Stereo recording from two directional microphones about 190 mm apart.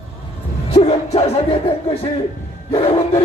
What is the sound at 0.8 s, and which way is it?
Speech, 35° left (ahead or behind).